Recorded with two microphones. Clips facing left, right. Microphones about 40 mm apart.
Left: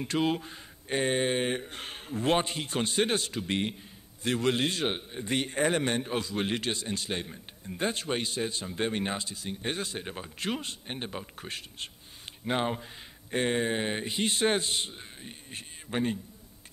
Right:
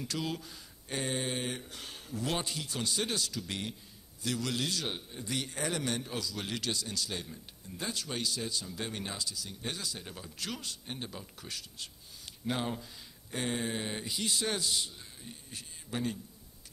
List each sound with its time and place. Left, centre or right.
0.0 s a man's voice: left